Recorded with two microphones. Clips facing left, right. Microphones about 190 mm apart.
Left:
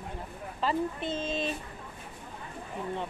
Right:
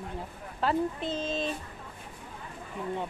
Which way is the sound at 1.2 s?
Centre (ahead or behind).